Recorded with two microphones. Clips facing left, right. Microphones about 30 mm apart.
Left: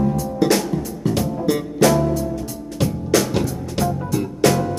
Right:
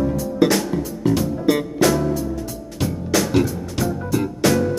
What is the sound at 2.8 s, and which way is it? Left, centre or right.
Music, centre.